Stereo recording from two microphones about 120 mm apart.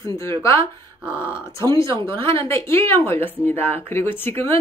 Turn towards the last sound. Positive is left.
turn(degrees=20)  # may be behind; listen again after turning